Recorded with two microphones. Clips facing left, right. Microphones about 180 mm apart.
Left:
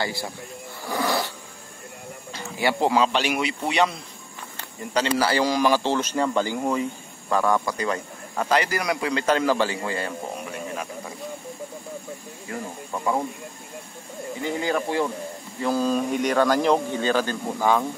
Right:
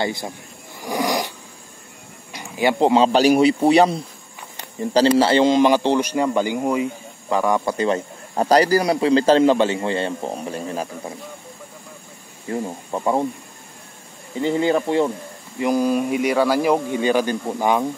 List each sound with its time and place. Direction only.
0.0 s speech: 20° right (ahead or behind)
2.3 s speech: 15° right (ahead or behind)
3.1 s speech: 35° right (ahead or behind); by 7.6 s 15° right (ahead or behind)
7.6 s a man's voice: 25° right (ahead or behind)
12.4 s speech: 25° right (ahead or behind)
14.4 s speech: 25° right (ahead or behind)
15.6 s speech: 15° right (ahead or behind)